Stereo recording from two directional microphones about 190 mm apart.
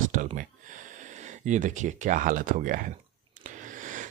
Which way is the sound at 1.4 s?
40° right (ahead or behind).